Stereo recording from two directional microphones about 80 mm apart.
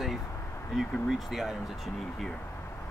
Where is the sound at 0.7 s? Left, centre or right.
Centre.